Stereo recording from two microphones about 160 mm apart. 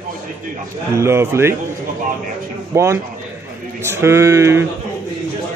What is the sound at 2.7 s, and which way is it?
Speech, 15° right (ahead or behind).